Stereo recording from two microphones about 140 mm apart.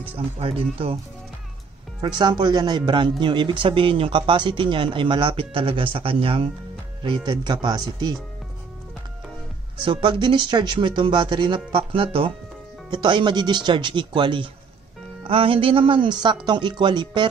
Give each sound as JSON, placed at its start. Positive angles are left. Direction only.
{"t": 0.4, "sound": "speech", "side_deg": -40}
{"t": 2.0, "sound": "speech", "side_deg": -35}
{"t": 9.8, "sound": "speech", "side_deg": -35}